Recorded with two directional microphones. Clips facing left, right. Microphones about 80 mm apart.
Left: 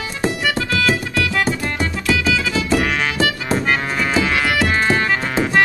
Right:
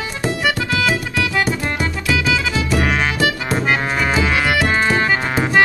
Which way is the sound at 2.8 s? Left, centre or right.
Centre.